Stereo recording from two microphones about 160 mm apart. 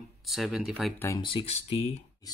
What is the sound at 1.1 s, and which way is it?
Speech, 35° left (ahead or behind).